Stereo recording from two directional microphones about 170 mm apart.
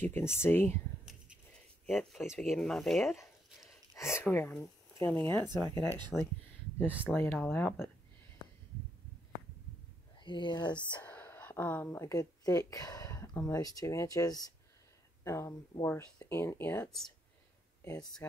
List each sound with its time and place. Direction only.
0.0 s speech: 15° left (ahead or behind)
1.9 s speech: centre (ahead or behind)
3.2 s a sound: 15° left (ahead or behind)
5.9 s speech: 25° right (ahead or behind)
6.9 s speech: 10° right (ahead or behind)
7.2 s speech: 15° left (ahead or behind)
10.1 s speech: 30° left (ahead or behind)
10.7 s speech: 10° left (ahead or behind)